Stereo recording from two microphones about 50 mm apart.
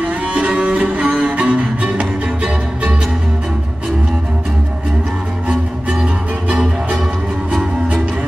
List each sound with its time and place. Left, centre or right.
0.0 s cello: right
5.5 s music: centre